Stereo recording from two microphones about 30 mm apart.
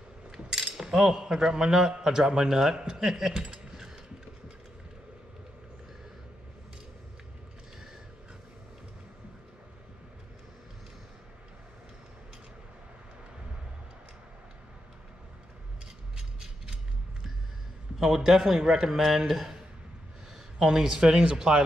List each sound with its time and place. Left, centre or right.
0.5 s coin: centre
2.1 s speech: right
16.2 s mechanisms: right
18.0 s a man's voice: centre
21.3 s speech: right